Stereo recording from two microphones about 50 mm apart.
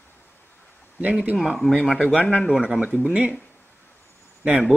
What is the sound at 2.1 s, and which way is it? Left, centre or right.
Speech, left.